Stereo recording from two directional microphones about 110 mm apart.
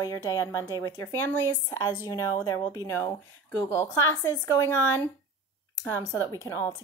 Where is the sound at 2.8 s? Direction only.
25° left (ahead or behind).